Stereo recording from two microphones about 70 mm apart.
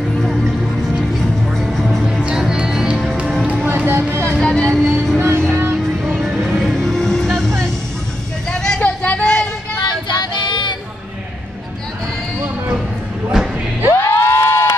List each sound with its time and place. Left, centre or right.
0.2 s music: centre
2.2 s music: centre
3.6 s vehicle: right
4.4 s music: centre
5.1 s music: right
5.5 s vehicle: right
6.0 s music: centre
6.4 s music: centre
8.5 s vehicle: centre
9.8 s music: left
13.9 s a sound: left